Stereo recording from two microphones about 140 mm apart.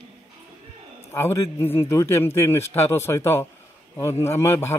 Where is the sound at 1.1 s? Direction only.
15° left (ahead or behind).